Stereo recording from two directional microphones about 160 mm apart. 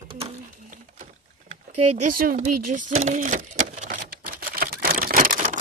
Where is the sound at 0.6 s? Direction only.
50° right (ahead or behind).